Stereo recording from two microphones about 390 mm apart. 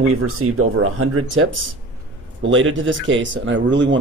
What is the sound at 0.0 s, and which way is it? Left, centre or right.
Speech, right.